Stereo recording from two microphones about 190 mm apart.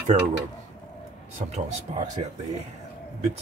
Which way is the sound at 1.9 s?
40° right (ahead or behind).